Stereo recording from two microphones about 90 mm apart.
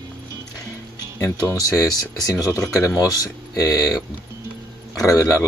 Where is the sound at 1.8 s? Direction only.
45° left (ahead or behind).